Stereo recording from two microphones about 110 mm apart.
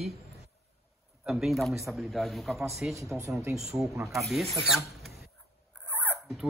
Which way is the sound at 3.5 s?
5° right (ahead or behind).